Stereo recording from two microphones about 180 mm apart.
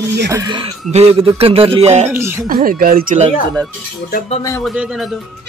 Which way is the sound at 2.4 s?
55° right (ahead or behind).